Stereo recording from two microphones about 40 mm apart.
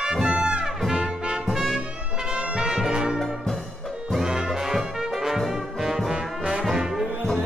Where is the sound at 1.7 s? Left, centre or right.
Centre.